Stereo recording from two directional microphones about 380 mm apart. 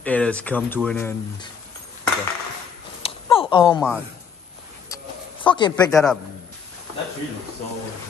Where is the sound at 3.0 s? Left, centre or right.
Centre.